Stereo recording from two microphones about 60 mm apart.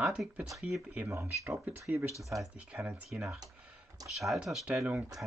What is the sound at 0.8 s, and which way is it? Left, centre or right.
Speech, right.